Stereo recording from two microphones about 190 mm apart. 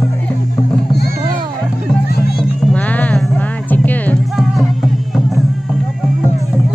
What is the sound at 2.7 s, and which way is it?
Music, 10° left (ahead or behind).